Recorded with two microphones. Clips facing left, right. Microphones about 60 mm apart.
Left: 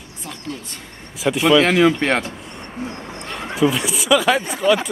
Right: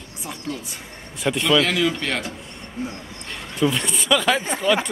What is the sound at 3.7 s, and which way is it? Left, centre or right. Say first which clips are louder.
Speech: left 4 dB; centre.